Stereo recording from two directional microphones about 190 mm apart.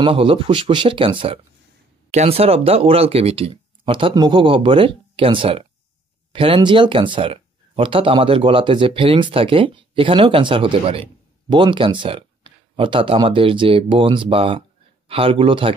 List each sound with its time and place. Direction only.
0.0 s speech: 30° right (ahead or behind)